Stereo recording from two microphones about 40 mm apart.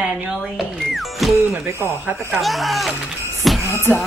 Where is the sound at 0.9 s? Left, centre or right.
Centre.